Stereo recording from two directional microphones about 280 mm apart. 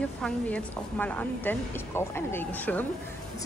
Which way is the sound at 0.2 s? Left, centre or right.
Centre.